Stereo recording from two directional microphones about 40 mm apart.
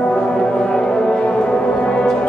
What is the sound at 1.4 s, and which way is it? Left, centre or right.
Music, left.